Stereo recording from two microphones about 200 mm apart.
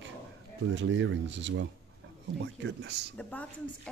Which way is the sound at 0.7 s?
65° right (ahead or behind).